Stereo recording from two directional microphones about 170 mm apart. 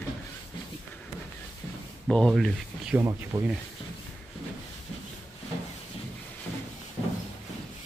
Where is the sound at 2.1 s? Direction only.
Centre (ahead or behind).